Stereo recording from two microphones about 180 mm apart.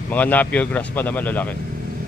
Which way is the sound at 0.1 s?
10° left (ahead or behind).